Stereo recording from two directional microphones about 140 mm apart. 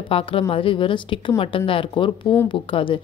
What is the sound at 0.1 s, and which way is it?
A woman's voice, 40° left (ahead or behind).